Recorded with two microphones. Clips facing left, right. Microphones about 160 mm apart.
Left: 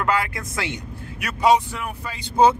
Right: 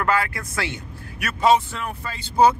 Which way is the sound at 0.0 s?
20° left (ahead or behind).